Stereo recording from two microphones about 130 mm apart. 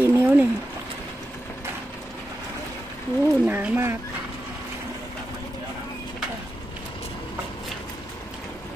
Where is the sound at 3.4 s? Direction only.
15° right (ahead or behind).